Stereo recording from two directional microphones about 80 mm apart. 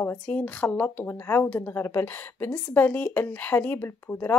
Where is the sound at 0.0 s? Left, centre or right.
Left.